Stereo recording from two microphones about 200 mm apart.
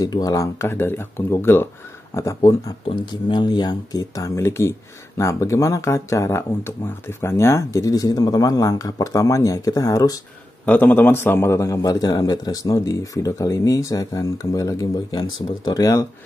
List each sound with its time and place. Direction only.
0.0 s speech: 20° left (ahead or behind)